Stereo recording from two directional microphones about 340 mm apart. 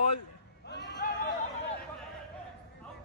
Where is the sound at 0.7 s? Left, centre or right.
Left.